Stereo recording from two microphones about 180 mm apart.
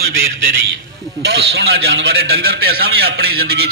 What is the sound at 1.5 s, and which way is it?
Speech, 65° right (ahead or behind).